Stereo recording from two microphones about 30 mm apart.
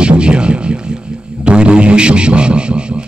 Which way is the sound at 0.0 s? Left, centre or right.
Right.